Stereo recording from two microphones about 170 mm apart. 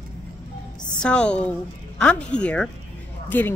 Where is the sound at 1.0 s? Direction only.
5° left (ahead or behind).